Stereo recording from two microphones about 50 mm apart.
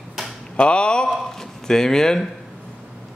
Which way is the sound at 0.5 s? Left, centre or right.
Left.